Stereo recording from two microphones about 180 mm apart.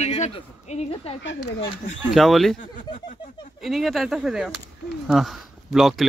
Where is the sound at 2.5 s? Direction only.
45° left (ahead or behind).